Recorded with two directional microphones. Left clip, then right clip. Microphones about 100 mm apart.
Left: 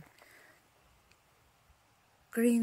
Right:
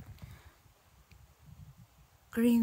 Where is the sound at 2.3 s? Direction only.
40° right (ahead or behind).